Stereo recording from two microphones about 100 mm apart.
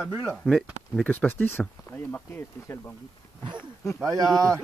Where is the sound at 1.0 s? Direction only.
15° left (ahead or behind).